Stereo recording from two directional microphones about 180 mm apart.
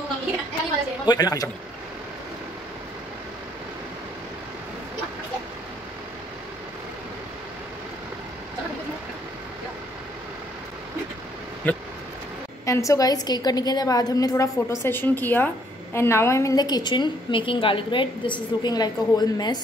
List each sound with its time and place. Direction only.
1.0 s a woman's voice: 20° left (ahead or behind)
11.6 s a woman's voice: 10° left (ahead or behind)